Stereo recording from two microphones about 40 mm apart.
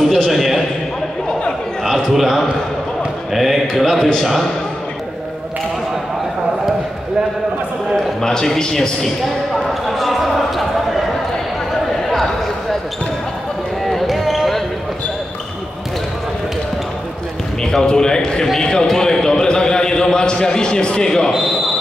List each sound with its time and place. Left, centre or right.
0.3 s a sound: centre
1.8 s a man's voice: centre
3.3 s mantra: centre
7.9 s a man's voice: centre
9.7 s basketball bounce: centre
13.8 s a sound: centre
17.6 s a man's voice: centre